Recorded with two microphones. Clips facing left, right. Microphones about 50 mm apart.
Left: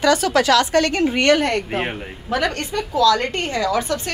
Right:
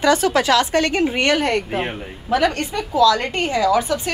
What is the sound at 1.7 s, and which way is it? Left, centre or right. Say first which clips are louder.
Speech: even; centre.